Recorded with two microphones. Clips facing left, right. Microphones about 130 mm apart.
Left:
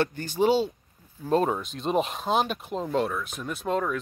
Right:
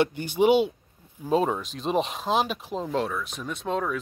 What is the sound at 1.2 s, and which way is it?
Speech, centre (ahead or behind).